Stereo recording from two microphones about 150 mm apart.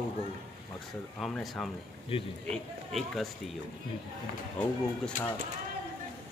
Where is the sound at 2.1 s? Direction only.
40° left (ahead or behind).